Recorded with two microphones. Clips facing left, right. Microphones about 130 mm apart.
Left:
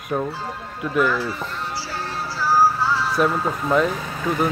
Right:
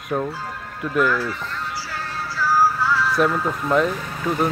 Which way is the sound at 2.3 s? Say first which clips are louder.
Left 1 dB; 30° left (ahead or behind).